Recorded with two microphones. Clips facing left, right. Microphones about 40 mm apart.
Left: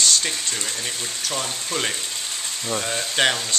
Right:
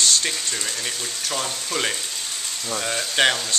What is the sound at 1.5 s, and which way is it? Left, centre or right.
Speech, centre.